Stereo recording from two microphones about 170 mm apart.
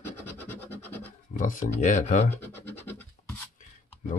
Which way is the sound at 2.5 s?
10° left (ahead or behind).